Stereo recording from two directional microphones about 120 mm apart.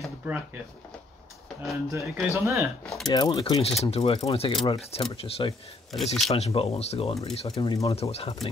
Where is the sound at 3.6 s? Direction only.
55° left (ahead or behind).